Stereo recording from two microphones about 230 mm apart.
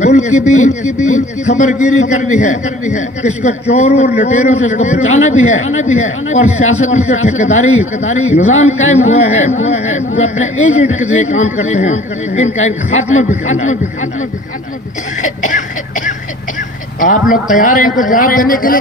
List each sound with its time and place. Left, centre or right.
0.0 s a man's voice: left
15.2 s cough: left
17.0 s a man's voice: left